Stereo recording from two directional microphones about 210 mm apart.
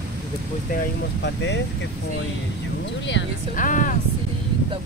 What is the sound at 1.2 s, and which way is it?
Speech, 55° left (ahead or behind).